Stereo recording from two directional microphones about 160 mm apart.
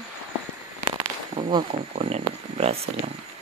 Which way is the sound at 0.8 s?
35° right (ahead or behind).